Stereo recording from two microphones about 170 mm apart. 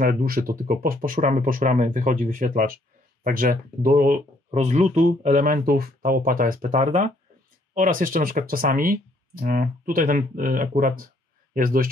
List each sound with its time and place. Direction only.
0.0 s speech: 60° right (ahead or behind)
4.5 s speech: 45° right (ahead or behind)